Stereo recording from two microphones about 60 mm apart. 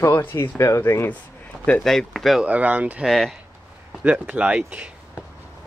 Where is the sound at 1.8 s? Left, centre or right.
Centre.